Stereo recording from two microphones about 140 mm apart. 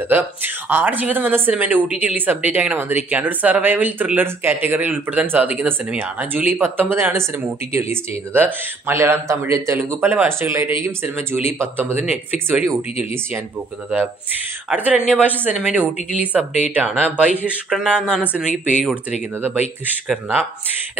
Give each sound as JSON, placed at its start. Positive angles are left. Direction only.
{"t": 0.1, "sound": "speech", "side_deg": -15}
{"t": 14.7, "sound": "speech", "side_deg": -10}
{"t": 20.1, "sound": "speech", "side_deg": -10}